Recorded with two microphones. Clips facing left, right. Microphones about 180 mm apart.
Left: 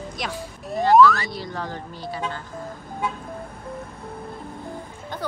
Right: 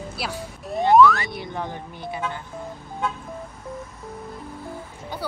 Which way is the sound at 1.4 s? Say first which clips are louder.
Even; 20° right (ahead or behind).